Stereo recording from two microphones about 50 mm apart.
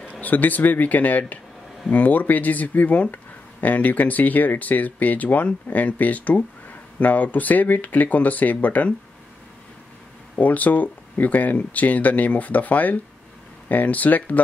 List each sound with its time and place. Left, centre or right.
0.1 s speech: left
10.3 s speech: left